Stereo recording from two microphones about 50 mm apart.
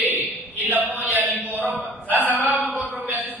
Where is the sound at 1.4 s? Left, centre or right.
Left.